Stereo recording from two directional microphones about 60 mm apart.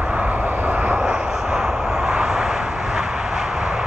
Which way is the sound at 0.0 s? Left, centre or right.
Right.